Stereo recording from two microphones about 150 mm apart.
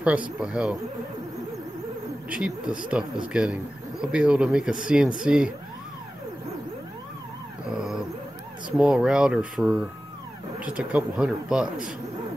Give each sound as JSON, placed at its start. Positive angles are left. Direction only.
{"t": 0.4, "sound": "speech", "side_deg": -5}
{"t": 2.2, "sound": "speech", "side_deg": -5}
{"t": 7.7, "sound": "dog", "side_deg": -5}
{"t": 8.7, "sound": "speech", "side_deg": -5}